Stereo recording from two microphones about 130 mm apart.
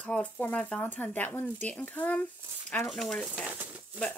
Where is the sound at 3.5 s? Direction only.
10° right (ahead or behind).